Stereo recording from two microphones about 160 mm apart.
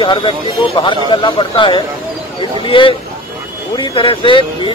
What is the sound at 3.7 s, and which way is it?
Speech, 30° left (ahead or behind).